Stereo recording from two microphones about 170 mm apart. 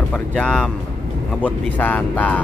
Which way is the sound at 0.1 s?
5° left (ahead or behind).